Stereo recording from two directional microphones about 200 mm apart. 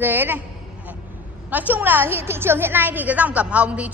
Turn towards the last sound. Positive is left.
turn(degrees=-5)  # may be behind; listen again after turning